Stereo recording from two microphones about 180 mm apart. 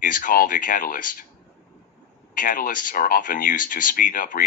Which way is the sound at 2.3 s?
50° left (ahead or behind).